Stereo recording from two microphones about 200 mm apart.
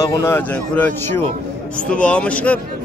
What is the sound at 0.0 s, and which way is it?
A man's voice, 15° left (ahead or behind).